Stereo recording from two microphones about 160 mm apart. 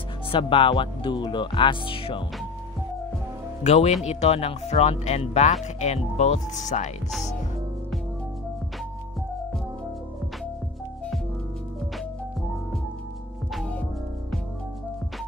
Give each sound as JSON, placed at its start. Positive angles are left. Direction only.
{"t": 0.3, "sound": "speech", "side_deg": 30}
{"t": 3.6, "sound": "speech", "side_deg": 45}
{"t": 13.5, "sound": "music", "side_deg": 5}